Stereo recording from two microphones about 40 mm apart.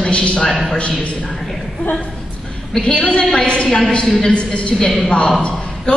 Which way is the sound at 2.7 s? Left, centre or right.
Centre.